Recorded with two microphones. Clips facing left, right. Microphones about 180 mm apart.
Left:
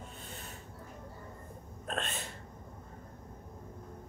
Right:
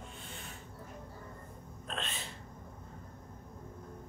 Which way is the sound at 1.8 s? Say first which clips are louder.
Left 4 dB; 45° left (ahead or behind).